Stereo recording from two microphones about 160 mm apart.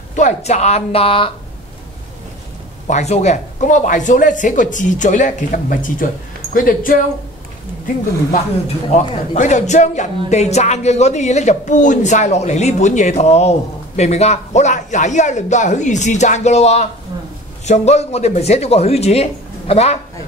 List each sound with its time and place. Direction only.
0.1 s speech: 45° left (ahead or behind)
2.9 s speech: 45° left (ahead or behind)
8.9 s speech: 45° left (ahead or behind)